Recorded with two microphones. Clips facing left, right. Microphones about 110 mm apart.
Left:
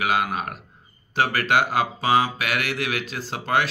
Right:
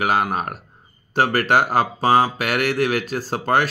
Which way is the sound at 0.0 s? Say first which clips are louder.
Right 3 dB; 40° right (ahead or behind).